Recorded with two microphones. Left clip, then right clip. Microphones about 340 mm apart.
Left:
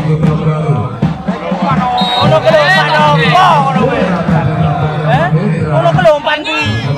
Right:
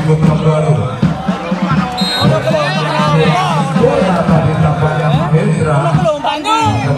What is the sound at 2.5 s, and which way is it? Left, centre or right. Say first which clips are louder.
Music: left 6 dB; left.